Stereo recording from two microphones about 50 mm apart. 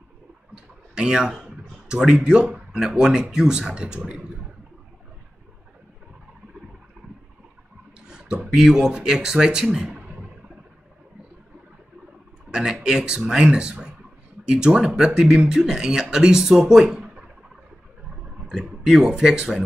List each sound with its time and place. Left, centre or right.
0.9 s speech: centre
8.1 s speech: centre
9.9 s a sound: right
12.4 s speech: centre
18.5 s speech: centre